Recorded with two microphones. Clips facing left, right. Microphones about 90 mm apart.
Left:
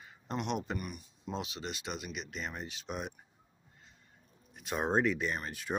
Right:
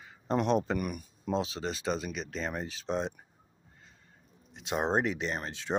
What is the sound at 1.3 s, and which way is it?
Speech, 35° right (ahead or behind).